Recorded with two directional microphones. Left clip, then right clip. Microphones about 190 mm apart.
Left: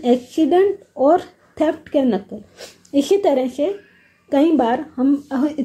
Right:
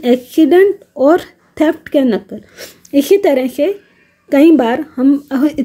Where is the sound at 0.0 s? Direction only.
35° right (ahead or behind).